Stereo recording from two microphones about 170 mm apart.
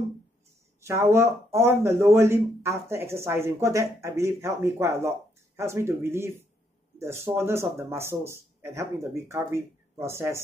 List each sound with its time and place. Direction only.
0.7 s speech: 15° right (ahead or behind)